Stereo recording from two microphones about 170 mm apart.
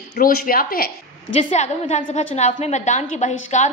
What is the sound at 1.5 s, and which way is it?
A woman's voice, 45° left (ahead or behind).